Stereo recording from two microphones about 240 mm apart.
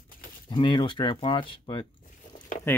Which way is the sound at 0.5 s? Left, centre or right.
Centre.